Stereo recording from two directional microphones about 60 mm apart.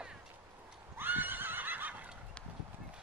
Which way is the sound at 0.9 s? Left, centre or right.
Right.